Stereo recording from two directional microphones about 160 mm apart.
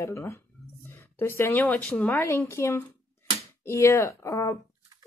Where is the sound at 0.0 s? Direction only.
15° left (ahead or behind).